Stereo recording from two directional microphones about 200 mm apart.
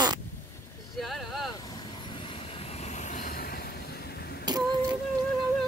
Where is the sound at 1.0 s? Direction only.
Centre (ahead or behind).